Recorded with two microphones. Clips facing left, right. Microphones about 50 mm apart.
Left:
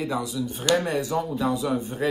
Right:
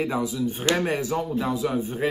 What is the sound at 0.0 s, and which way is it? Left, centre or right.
Speech, right.